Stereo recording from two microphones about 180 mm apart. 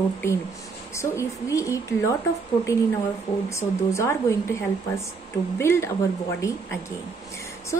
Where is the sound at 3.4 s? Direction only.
15° left (ahead or behind).